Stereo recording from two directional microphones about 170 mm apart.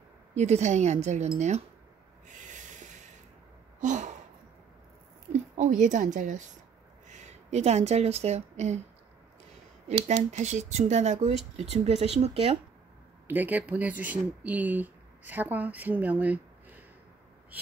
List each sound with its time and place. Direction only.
0.3 s speech: 40° right (ahead or behind)
2.2 s snort: 45° right (ahead or behind)
3.8 s a sound: 45° right (ahead or behind)
5.3 s a woman's voice: 45° right (ahead or behind)
9.8 s speech: 40° right (ahead or behind)
13.3 s speech: 10° right (ahead or behind)